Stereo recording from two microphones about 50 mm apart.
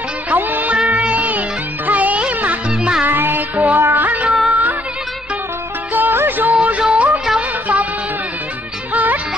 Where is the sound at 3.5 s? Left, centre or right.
Right.